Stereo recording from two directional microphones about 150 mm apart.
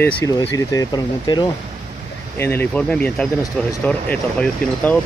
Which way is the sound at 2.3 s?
15° left (ahead or behind).